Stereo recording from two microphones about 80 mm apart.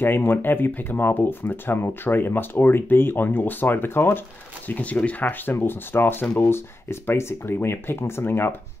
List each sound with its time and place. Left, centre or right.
0.0 s speech: left
5.4 s speech: left